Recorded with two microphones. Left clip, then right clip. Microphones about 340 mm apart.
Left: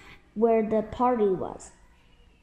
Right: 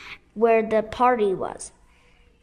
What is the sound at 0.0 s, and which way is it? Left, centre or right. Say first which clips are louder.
A woman's voice: right 4 dB; right.